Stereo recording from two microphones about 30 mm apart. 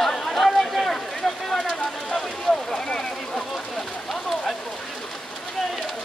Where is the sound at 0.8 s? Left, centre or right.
Centre.